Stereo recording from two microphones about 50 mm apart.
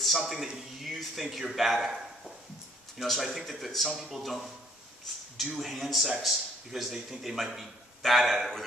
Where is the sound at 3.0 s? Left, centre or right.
Centre.